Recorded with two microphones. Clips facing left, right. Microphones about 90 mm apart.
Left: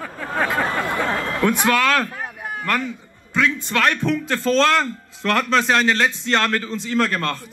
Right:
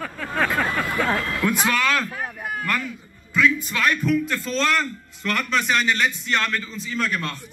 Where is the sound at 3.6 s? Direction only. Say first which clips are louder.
Left 3 dB; 80° left.